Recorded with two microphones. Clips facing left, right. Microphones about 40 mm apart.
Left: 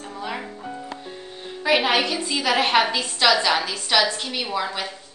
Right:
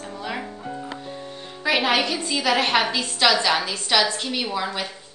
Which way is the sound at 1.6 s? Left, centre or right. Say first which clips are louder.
Left 1 dB; centre.